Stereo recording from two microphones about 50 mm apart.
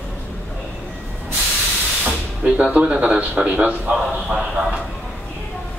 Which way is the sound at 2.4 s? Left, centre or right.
Right.